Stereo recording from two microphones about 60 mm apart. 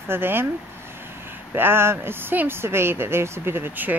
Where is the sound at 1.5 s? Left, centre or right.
Right.